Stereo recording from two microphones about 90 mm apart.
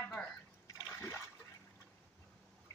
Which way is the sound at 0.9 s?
30° left (ahead or behind).